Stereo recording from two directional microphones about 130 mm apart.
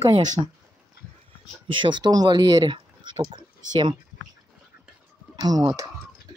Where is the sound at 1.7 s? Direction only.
35° right (ahead or behind).